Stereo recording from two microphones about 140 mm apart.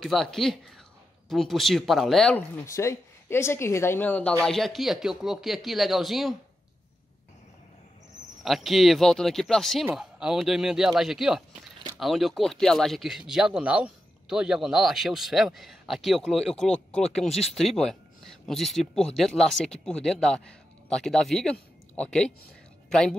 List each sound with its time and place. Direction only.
0.0 s speech: centre (ahead or behind)
2.3 s speech: 20° left (ahead or behind); by 6.3 s centre (ahead or behind)
8.5 s speech: centre (ahead or behind)
17.3 s speech: 45° left (ahead or behind)
17.6 s speech: centre (ahead or behind)